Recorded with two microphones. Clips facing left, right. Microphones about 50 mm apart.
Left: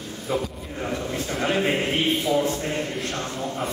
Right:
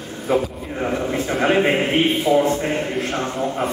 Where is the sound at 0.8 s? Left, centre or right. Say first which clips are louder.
Right 6 dB; right.